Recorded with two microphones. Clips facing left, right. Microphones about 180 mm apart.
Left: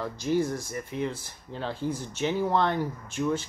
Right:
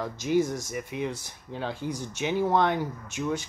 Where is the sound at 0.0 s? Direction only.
15° right (ahead or behind).